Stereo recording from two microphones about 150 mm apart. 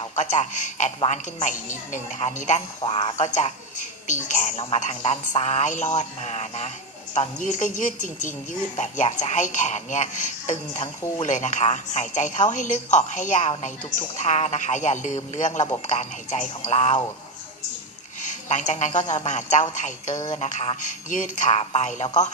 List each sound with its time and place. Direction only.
0.1 s a woman's voice: 55° left (ahead or behind)
2.8 s speech: 35° left (ahead or behind)
3.2 s a woman's voice: 50° left (ahead or behind)
18.2 s a woman's voice: 55° left (ahead or behind)